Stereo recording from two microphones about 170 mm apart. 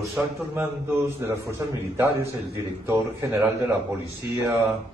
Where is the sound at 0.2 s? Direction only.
10° right (ahead or behind).